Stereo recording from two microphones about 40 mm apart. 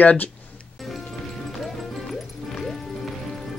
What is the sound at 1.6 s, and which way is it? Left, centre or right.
Music, centre.